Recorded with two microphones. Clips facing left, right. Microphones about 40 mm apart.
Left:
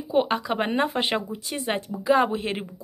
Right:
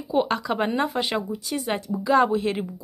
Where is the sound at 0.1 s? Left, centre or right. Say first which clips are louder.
Even; left.